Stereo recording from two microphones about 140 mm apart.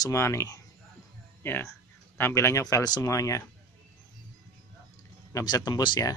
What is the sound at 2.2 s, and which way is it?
Speech, 20° left (ahead or behind).